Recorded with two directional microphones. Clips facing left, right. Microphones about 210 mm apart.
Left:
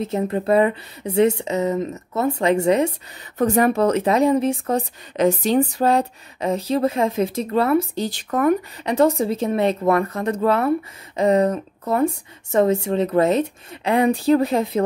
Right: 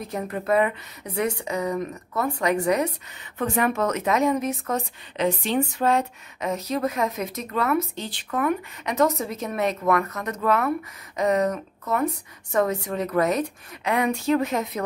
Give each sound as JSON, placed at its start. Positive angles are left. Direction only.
{"t": 0.0, "sound": "speech", "side_deg": 25}
{"t": 3.3, "sound": "speech", "side_deg": 40}
{"t": 5.1, "sound": "speech", "side_deg": 40}